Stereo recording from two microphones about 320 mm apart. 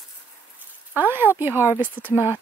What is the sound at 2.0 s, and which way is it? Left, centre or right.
Speech, centre.